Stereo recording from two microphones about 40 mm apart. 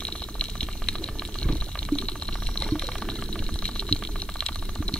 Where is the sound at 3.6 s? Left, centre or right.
Left.